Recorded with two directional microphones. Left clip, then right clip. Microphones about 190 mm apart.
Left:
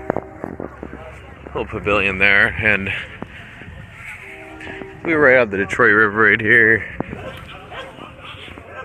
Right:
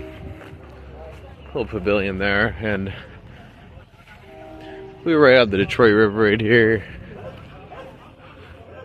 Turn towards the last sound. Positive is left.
turn(degrees=-40)  # may be behind; listen again after turning